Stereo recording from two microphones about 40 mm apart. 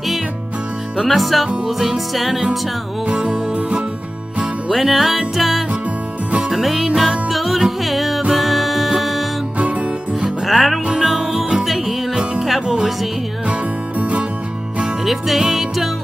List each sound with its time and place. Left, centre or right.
0.9 s music: centre
3.1 s music: right
4.6 s music: centre
9.6 s music: right
10.4 s music: centre
12.1 s music: centre
13.5 s music: right
15.0 s music: centre